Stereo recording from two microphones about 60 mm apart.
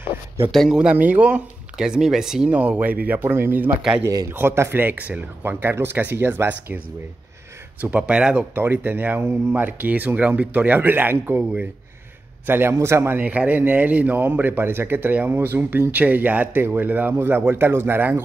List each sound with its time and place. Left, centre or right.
0.7 s speech: centre
0.9 s speech: right
1.8 s speech: centre
2.5 s speech: right
7.8 s speech: centre
8.5 s speech: right
12.4 s speech: right
12.7 s a man's voice: right
13.1 s speech: right